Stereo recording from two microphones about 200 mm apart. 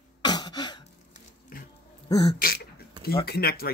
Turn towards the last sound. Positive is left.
turn(degrees=50)  # may be behind; listen again after turning